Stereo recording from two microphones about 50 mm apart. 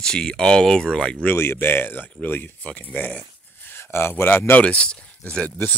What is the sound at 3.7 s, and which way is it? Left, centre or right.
Speech, left.